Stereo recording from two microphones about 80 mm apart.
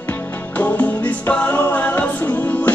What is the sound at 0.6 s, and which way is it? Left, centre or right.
Music, left.